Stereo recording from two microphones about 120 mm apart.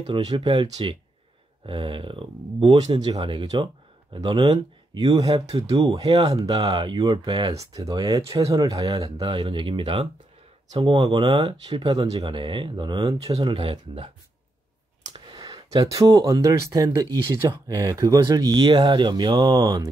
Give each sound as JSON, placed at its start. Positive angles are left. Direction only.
{"t": 0.0, "sound": "speech", "side_deg": -40}
{"t": 9.0, "sound": "speech", "side_deg": -50}
{"t": 13.5, "sound": "speech", "side_deg": -50}
{"t": 15.1, "sound": "speech", "side_deg": -40}